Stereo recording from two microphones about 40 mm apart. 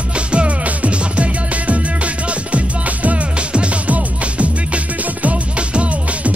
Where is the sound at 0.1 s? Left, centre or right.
Right.